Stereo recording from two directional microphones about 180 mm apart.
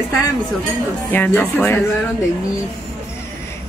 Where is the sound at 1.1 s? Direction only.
10° left (ahead or behind).